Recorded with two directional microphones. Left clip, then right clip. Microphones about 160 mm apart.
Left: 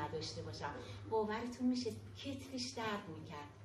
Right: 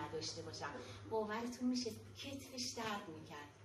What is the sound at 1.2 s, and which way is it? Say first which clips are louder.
Speech: left 2 dB; 10° right (ahead or behind).